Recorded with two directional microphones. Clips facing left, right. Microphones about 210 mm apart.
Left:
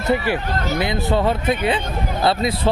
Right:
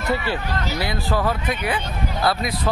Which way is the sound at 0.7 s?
20° left (ahead or behind).